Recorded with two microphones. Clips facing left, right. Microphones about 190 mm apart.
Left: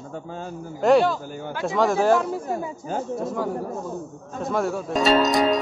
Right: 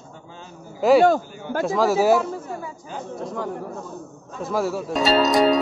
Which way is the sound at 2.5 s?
45° left (ahead or behind).